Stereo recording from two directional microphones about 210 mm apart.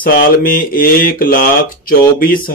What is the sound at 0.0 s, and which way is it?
Speech, 40° left (ahead or behind).